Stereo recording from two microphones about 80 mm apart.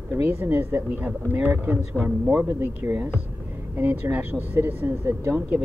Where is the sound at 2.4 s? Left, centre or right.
Right.